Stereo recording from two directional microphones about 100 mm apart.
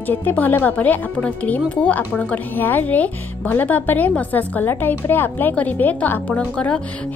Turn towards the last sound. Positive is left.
turn(degrees=15)  # may be behind; listen again after turning